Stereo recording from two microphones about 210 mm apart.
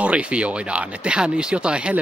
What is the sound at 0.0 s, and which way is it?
Speech, 5° right (ahead or behind).